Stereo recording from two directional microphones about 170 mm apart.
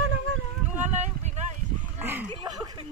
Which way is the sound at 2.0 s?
10° right (ahead or behind).